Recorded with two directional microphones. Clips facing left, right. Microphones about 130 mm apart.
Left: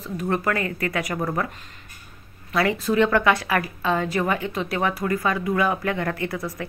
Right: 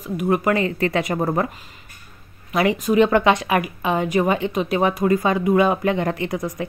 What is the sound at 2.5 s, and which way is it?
A woman's voice, 20° right (ahead or behind).